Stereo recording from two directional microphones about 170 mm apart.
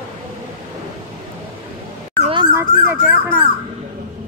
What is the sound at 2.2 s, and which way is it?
Dog, 30° right (ahead or behind).